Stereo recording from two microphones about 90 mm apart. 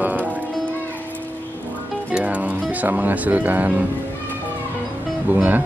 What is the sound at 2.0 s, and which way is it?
Music, 15° right (ahead or behind).